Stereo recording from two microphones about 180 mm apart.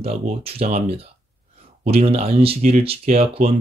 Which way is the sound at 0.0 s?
35° right (ahead or behind).